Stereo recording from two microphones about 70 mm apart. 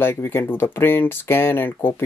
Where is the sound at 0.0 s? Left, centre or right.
Left.